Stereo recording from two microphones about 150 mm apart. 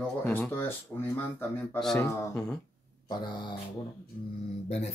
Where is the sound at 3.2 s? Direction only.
30° left (ahead or behind).